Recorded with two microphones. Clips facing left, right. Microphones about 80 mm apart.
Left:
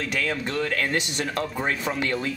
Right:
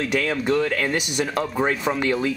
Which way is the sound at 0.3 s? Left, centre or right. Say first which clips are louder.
Right 5 dB; centre.